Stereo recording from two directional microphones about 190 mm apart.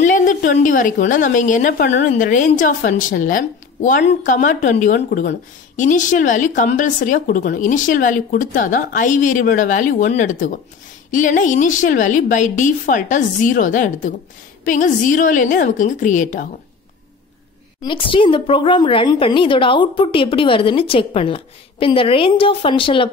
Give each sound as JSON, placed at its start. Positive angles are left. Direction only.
{"t": 0.0, "sound": "a woman's voice", "side_deg": 40}
{"t": 17.8, "sound": "a woman's voice", "side_deg": 25}